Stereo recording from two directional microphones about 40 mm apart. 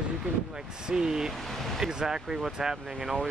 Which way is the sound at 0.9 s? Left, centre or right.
Centre.